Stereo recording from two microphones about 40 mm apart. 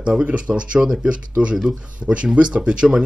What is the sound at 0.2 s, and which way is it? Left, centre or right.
Speech, right.